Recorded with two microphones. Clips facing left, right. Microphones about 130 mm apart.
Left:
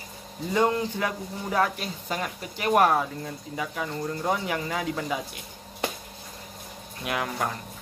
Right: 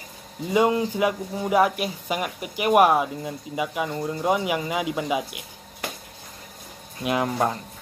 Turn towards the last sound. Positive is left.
turn(degrees=-30)  # may be behind; listen again after turning